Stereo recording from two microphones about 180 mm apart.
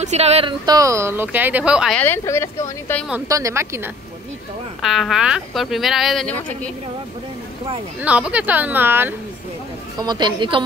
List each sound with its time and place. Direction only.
0.0 s speech: 35° right (ahead or behind); by 2.0 s 5° right (ahead or behind)
2.0 s speech: 10° left (ahead or behind)
3.3 s speech: 15° right (ahead or behind)
4.8 s speech: centre (ahead or behind)
8.0 s speech: 5° right (ahead or behind)
9.9 s a woman's voice: 25° right (ahead or behind)